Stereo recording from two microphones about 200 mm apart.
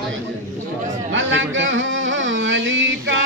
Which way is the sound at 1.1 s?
70° right (ahead or behind).